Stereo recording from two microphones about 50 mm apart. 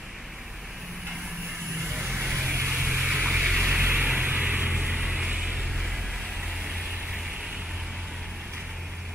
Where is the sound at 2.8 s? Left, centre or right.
Centre.